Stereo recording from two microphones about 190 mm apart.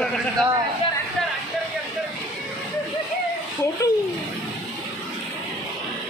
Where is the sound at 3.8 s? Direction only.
20° left (ahead or behind).